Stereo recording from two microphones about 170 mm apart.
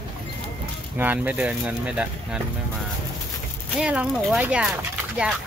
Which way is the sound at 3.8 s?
5° right (ahead or behind).